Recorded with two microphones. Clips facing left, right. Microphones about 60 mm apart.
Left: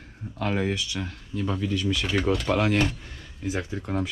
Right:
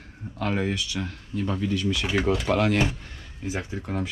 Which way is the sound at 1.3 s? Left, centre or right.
Right.